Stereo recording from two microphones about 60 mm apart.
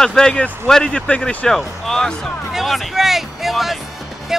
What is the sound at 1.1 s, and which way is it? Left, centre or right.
Speech, left.